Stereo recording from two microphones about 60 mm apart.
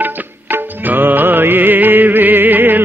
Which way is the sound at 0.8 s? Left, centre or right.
Right.